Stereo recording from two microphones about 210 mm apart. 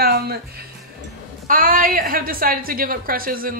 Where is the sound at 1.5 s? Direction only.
40° right (ahead or behind).